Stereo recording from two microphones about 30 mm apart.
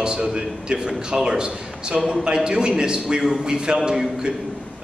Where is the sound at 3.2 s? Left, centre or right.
Centre.